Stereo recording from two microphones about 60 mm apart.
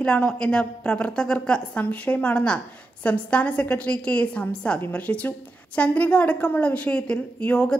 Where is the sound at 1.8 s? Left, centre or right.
Left.